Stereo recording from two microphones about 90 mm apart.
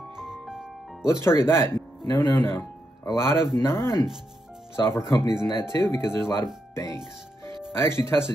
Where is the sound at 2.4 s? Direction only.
35° left (ahead or behind).